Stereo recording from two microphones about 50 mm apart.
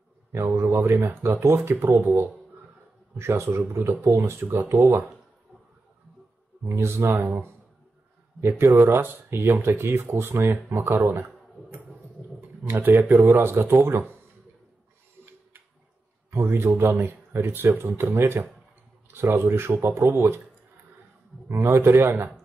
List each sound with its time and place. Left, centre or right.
0.4 s speech: right
3.2 s speech: right
4.0 s speech: right
4.7 s speech: right
6.6 s speech: right
12.4 s speech: right
16.3 s speech: right
21.5 s speech: right